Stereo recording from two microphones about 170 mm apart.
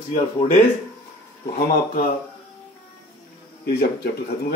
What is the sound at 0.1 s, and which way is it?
Speech, 40° left (ahead or behind).